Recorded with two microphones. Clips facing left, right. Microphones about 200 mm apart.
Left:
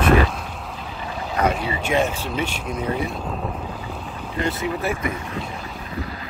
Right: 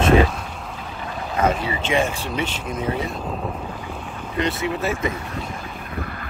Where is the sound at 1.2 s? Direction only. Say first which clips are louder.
Right 1 dB; 10° left (ahead or behind).